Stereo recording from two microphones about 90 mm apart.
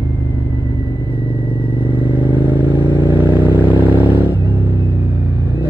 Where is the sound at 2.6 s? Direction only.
55° right (ahead or behind).